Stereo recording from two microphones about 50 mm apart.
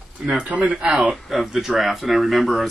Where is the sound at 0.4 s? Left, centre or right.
Right.